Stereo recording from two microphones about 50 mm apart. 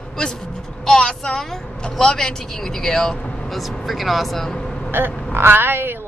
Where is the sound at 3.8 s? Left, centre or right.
Centre.